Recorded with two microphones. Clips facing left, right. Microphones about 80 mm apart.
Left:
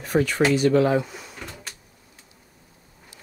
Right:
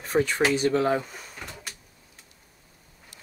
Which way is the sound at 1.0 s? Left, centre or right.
Right.